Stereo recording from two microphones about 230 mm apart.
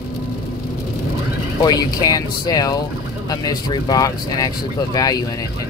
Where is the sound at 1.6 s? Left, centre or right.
Centre.